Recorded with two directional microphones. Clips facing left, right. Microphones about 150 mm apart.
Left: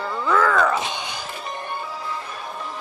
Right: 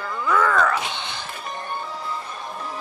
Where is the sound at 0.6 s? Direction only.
20° left (ahead or behind).